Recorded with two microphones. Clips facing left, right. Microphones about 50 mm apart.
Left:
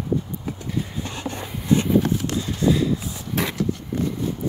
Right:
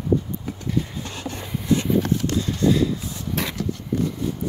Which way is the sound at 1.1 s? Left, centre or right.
Centre.